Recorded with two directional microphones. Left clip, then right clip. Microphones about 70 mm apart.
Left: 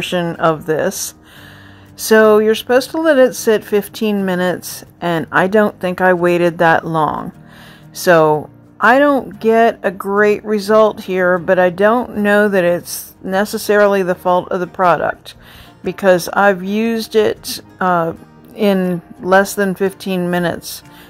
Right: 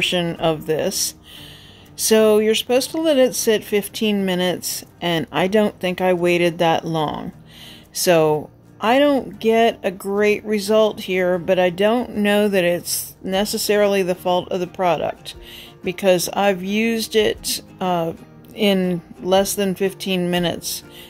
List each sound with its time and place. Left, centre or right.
0.0 s speech: left
2.0 s a woman's voice: left